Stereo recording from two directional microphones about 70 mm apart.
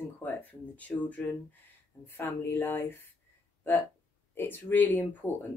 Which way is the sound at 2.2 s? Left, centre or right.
Left.